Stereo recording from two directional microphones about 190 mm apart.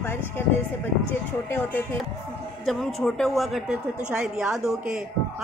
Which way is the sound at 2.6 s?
Centre (ahead or behind).